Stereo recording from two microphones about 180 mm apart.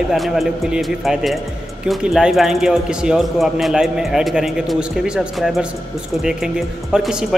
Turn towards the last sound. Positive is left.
turn(degrees=0)  # may be behind; listen again after turning